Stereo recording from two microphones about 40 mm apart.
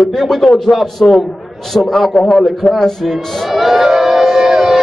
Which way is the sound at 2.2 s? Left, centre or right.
Centre.